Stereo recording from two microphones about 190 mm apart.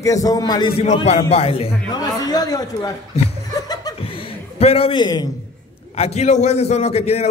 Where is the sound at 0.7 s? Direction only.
35° left (ahead or behind).